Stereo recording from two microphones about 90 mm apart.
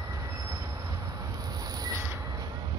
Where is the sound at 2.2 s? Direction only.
35° right (ahead or behind).